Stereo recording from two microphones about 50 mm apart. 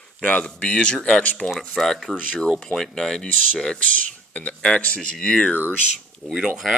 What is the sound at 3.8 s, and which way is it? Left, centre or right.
Speech, left.